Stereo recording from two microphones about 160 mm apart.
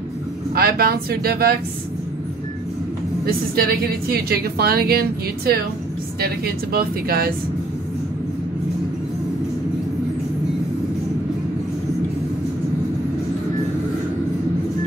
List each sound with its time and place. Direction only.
0.6 s a woman's voice: 75° right (ahead or behind)
3.3 s a woman's voice: 70° right (ahead or behind)